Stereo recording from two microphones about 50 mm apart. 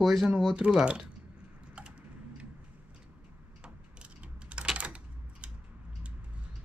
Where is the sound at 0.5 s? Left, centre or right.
Right.